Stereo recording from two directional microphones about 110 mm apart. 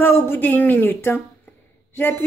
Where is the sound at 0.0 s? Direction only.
20° left (ahead or behind).